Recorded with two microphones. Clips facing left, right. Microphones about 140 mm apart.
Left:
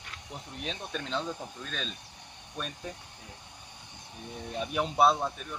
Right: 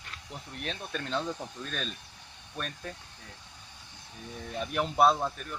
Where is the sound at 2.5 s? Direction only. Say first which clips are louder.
Even; 10° left (ahead or behind).